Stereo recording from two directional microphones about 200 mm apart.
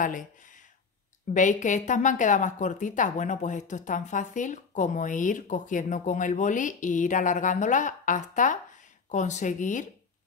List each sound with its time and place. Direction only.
0.0 s a woman's voice: 40° left (ahead or behind)